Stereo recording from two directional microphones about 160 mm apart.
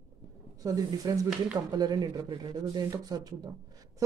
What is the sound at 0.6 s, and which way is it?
Speech, 20° right (ahead or behind).